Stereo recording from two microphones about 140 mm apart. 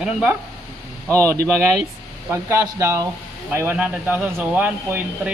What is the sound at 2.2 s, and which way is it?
Speech, 20° right (ahead or behind).